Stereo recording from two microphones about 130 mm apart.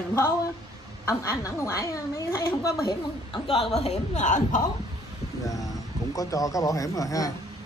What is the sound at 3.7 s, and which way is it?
Speech, 55° left (ahead or behind).